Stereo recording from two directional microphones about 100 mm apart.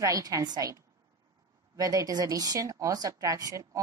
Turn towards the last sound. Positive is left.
turn(degrees=-35)  # may be behind; listen again after turning